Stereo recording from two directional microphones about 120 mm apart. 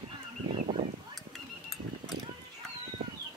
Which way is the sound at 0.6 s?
70° right (ahead or behind).